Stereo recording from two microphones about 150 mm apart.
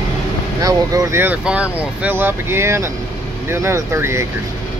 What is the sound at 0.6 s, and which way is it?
Speech, 25° right (ahead or behind).